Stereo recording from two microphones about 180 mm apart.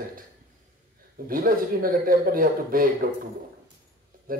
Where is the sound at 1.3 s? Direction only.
50° right (ahead or behind).